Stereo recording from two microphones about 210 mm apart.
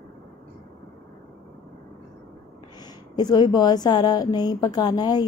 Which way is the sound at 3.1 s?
20° left (ahead or behind).